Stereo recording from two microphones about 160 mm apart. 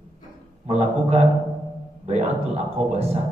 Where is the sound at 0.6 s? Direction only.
40° right (ahead or behind).